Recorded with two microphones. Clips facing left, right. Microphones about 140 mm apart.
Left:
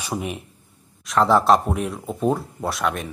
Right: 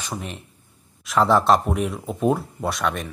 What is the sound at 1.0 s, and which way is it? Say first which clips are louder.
Speech: left 1 dB; centre (ahead or behind).